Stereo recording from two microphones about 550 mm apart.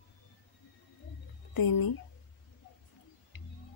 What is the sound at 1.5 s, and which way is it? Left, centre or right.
Speech, left.